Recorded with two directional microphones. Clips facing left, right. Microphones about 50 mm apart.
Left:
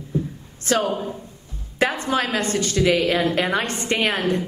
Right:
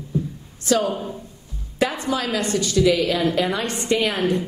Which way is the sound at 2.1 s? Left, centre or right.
Left.